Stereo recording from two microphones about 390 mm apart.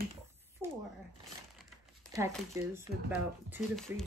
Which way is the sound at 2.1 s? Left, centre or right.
Centre.